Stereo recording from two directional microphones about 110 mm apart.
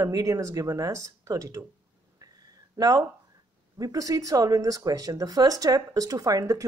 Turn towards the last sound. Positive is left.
turn(degrees=-30)  # may be behind; listen again after turning